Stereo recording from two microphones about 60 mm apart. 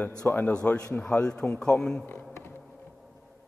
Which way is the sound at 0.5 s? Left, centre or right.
Centre.